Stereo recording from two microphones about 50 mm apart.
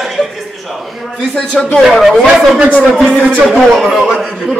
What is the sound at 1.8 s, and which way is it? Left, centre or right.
A man's voice, centre.